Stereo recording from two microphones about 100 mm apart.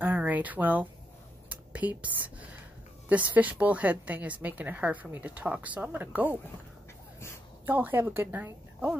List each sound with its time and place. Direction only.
0.0 s a sound: 15° right (ahead or behind)
3.1 s a woman's voice: 15° right (ahead or behind)
7.6 s a woman's voice: 20° right (ahead or behind)